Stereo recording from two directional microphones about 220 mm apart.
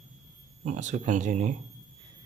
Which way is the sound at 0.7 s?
35° right (ahead or behind).